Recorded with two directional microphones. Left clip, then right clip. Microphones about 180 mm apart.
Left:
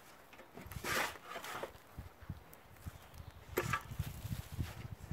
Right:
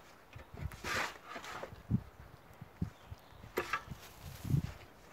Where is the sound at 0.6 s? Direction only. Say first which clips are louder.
Even; 50° left (ahead or behind).